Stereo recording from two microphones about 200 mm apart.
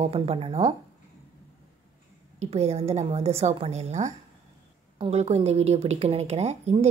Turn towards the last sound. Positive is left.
turn(degrees=-35)  # may be behind; listen again after turning